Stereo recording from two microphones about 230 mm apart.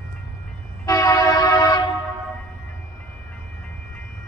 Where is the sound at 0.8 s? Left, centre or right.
Centre.